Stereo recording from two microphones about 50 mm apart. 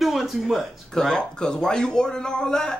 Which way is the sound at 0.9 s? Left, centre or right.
Centre.